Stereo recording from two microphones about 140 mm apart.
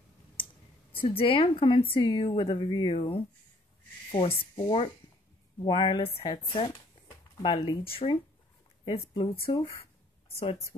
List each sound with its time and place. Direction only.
1.1 s speech: 40° left (ahead or behind)
7.0 s a sound: 35° left (ahead or behind)
7.4 s a woman's voice: 40° left (ahead or behind)